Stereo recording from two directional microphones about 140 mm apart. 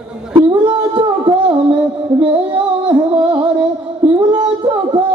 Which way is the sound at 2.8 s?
35° right (ahead or behind).